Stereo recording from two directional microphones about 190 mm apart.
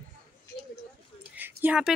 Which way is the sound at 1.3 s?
10° right (ahead or behind).